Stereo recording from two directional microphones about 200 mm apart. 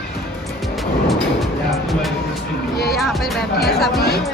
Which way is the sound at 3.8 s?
55° left (ahead or behind).